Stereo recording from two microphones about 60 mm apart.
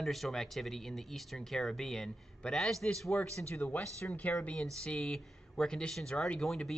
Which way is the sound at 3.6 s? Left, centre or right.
Left.